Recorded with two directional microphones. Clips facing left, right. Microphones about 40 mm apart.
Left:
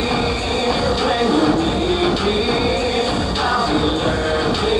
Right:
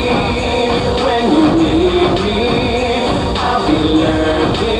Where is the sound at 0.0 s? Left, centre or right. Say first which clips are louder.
Right 5 dB; right.